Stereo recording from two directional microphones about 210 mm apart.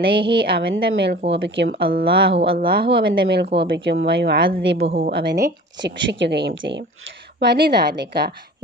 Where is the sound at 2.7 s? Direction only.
50° right (ahead or behind).